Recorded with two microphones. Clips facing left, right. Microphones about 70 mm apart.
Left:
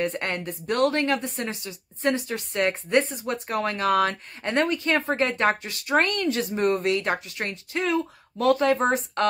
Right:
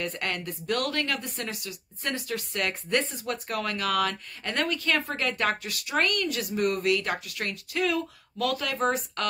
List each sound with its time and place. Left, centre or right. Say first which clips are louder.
0.0 s speech: left 5 dB; left